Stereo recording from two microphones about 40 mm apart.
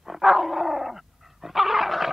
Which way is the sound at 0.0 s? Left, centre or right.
Centre.